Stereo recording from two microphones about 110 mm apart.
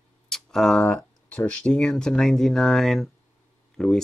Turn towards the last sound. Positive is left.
turn(degrees=5)  # may be behind; listen again after turning